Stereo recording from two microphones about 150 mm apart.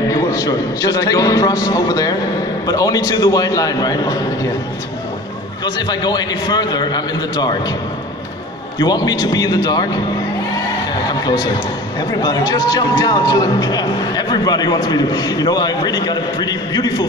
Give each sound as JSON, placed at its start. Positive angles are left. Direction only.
{"t": 0.1, "sound": "speech", "side_deg": 25}
{"t": 5.8, "sound": "speech", "side_deg": 25}
{"t": 8.7, "sound": "speech", "side_deg": 25}
{"t": 11.1, "sound": "a sound", "side_deg": 25}
{"t": 12.1, "sound": "speech", "side_deg": 25}